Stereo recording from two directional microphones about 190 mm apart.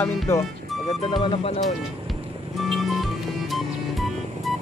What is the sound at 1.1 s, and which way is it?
Speech, 30° left (ahead or behind).